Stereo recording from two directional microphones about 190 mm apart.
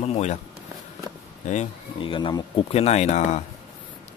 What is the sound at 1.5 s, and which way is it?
Speech, 30° left (ahead or behind).